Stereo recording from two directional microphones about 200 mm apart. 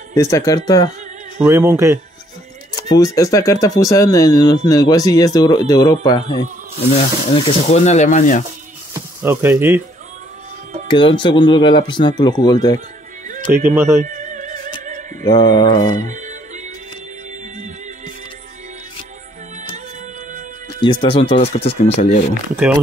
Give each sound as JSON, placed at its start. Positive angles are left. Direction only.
{"t": 0.1, "sound": "speech", "side_deg": 15}
{"t": 1.4, "sound": "speech", "side_deg": -10}
{"t": 2.7, "sound": "speech", "side_deg": 15}
{"t": 7.3, "sound": "speech", "side_deg": 35}
{"t": 9.2, "sound": "speech", "side_deg": -10}
{"t": 10.9, "sound": "speech", "side_deg": 25}
{"t": 13.7, "sound": "speech", "side_deg": -15}
{"t": 14.0, "sound": "opera", "side_deg": -40}
{"t": 15.2, "sound": "speech", "side_deg": 20}
{"t": 16.0, "sound": "music", "side_deg": -35}
{"t": 20.8, "sound": "speech", "side_deg": 25}